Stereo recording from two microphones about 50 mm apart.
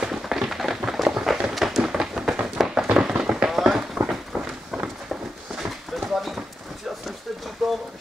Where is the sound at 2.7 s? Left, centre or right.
Centre.